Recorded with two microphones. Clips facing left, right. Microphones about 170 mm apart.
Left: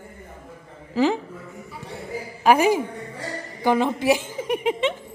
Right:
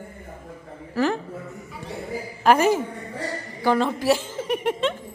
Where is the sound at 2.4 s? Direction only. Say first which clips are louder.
Left 1 dB; 10° left (ahead or behind).